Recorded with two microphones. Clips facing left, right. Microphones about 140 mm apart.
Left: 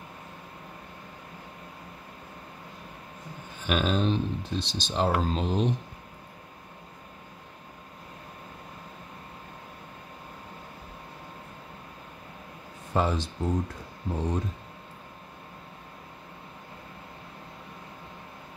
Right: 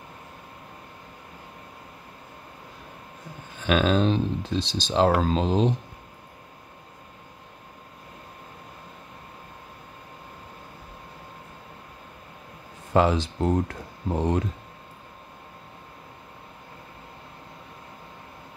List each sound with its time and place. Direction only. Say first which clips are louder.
3.6 s speech: right 5 dB; 90° right
12.9 s speech: right 6 dB; 90° right